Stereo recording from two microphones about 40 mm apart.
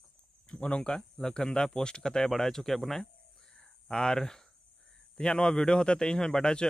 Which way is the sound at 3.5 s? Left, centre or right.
Centre.